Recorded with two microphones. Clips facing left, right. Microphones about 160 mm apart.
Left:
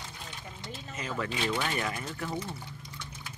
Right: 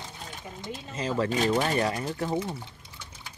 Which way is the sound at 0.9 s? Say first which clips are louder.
Right 7 dB; 35° right (ahead or behind).